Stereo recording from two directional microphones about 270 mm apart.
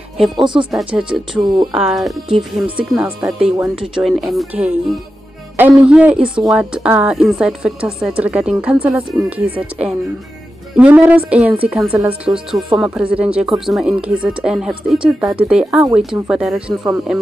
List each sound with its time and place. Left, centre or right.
0.7 s a woman's voice: centre